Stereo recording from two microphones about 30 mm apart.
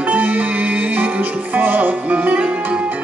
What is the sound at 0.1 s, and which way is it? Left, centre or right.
Music, right.